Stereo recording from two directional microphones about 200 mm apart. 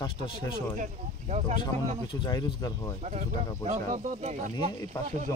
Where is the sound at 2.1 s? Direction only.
20° left (ahead or behind).